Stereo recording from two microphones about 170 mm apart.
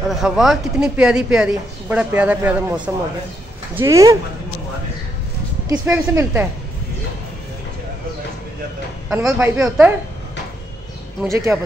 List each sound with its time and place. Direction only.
0.1 s speech: centre (ahead or behind); by 4.2 s 20° right (ahead or behind)
5.9 s speech: 10° right (ahead or behind)
9.1 s speech: 10° right (ahead or behind)
11.2 s speech: 15° right (ahead or behind)